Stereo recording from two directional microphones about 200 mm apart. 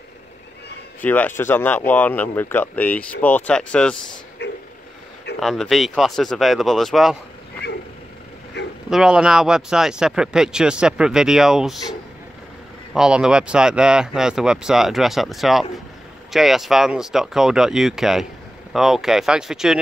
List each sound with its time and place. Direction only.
1.0 s speech: 10° left (ahead or behind)
4.4 s vehicle: 55° left (ahead or behind)
5.4 s speech: centre (ahead or behind)
8.6 s a sound: 60° left (ahead or behind)
8.9 s speech: 5° right (ahead or behind)
12.9 s speech: 5° right (ahead or behind)